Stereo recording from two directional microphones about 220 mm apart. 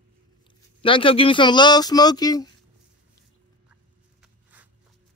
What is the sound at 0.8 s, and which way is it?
Speech, 25° left (ahead or behind).